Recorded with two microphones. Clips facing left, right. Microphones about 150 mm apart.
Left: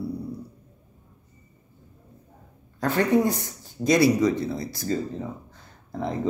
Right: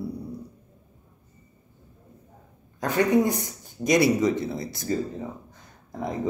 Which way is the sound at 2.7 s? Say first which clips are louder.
Even; 15° right (ahead or behind).